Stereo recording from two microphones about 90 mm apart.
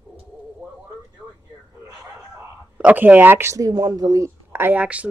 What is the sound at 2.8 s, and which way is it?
Speech, 20° right (ahead or behind).